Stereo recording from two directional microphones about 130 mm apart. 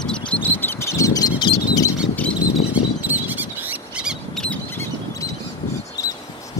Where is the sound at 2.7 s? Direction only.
15° right (ahead or behind).